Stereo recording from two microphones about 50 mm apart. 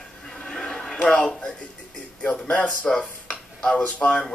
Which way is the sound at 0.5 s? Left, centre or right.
Centre.